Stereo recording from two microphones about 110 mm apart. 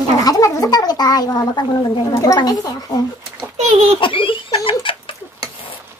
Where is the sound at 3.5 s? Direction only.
90° right.